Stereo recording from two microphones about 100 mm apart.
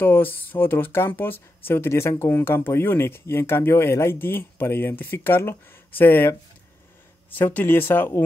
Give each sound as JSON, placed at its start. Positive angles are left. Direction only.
{"t": 0.0, "sound": "speech", "side_deg": 20}